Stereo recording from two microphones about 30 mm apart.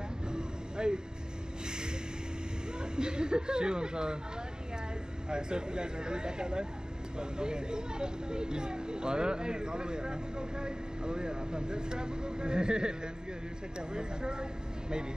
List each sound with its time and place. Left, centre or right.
0.3 s vehicle: right
2.8 s speech: right
5.3 s speech: right